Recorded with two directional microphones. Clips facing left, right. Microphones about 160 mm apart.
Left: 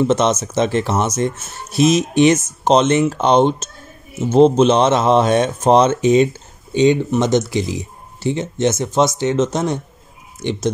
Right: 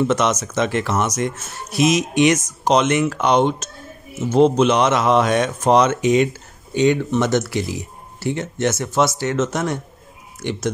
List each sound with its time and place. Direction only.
0.0 s speech: 25° left (ahead or behind)